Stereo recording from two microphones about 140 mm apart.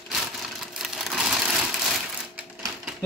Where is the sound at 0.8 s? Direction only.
5° right (ahead or behind).